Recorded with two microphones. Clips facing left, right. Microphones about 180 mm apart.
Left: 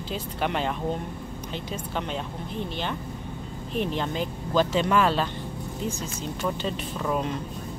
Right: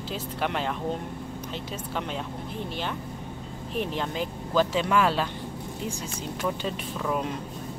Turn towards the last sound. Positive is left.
turn(degrees=0)  # may be behind; listen again after turning